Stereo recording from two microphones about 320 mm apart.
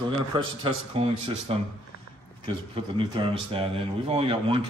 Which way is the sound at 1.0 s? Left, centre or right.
Centre.